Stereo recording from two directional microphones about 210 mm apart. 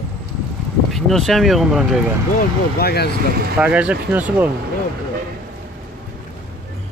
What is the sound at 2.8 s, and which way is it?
Speech, 50° left (ahead or behind).